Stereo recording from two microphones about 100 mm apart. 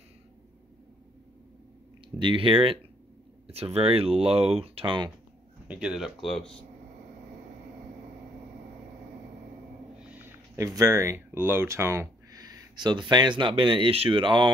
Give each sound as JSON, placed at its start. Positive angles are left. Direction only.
{"t": 2.1, "sound": "speech", "side_deg": -55}
{"t": 3.4, "sound": "speech", "side_deg": -80}
{"t": 5.7, "sound": "speech", "side_deg": -10}
{"t": 9.9, "sound": "a sound", "side_deg": -20}
{"t": 10.7, "sound": "speech", "side_deg": -30}
{"t": 12.3, "sound": "speech", "side_deg": -40}